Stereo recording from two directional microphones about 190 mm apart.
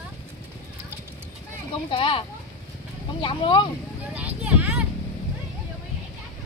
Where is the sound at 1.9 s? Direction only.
25° left (ahead or behind).